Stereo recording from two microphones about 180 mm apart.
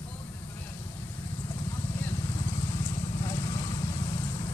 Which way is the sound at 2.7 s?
25° left (ahead or behind).